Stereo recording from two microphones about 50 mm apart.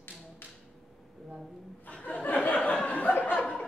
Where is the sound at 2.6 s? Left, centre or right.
Left.